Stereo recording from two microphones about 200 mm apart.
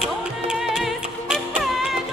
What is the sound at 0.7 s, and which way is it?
Music, centre (ahead or behind).